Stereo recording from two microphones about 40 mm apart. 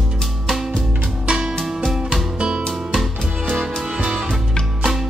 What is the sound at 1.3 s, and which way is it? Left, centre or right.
Music, right.